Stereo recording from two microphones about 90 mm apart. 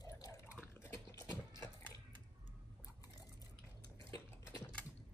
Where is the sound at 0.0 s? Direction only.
40° left (ahead or behind).